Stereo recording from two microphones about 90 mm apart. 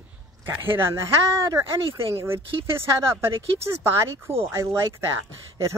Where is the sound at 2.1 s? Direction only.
30° right (ahead or behind).